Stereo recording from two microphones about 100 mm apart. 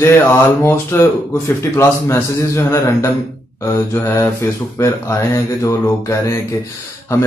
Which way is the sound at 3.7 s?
25° left (ahead or behind).